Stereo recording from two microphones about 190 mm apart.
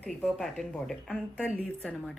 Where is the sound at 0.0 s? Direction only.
Centre (ahead or behind).